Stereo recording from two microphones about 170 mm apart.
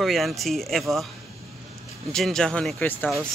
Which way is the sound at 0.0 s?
Centre (ahead or behind).